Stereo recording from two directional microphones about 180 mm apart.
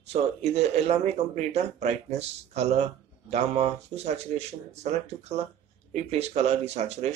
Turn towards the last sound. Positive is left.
turn(degrees=-35)  # may be behind; listen again after turning